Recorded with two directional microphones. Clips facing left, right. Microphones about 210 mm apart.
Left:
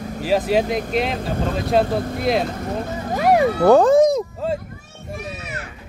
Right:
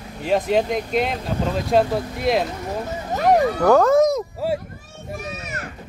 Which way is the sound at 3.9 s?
30° left (ahead or behind).